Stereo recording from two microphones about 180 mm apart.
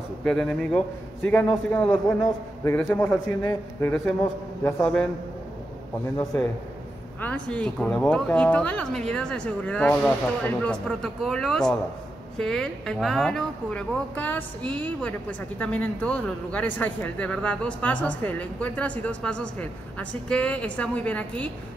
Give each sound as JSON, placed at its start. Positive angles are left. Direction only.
{"t": 0.2, "sound": "speech", "side_deg": 0}
{"t": 7.2, "sound": "speech", "side_deg": 10}